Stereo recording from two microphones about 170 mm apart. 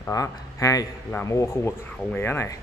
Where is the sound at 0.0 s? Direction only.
20° left (ahead or behind).